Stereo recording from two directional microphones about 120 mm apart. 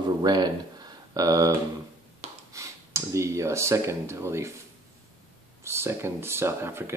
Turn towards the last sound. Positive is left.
turn(degrees=-20)  # may be behind; listen again after turning